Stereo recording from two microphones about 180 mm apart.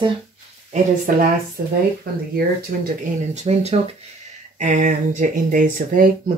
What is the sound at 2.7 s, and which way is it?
Speech, 55° right (ahead or behind).